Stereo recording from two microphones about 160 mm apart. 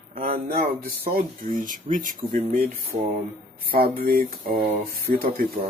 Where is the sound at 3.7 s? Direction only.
70° right (ahead or behind).